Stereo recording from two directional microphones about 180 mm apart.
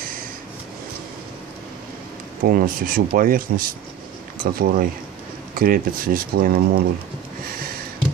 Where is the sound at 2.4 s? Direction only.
50° right (ahead or behind).